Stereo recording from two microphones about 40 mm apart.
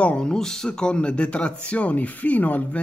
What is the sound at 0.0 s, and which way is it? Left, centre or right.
A man's voice, left.